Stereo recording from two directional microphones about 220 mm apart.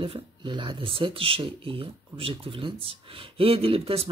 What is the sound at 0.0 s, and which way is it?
Speech, 25° right (ahead or behind).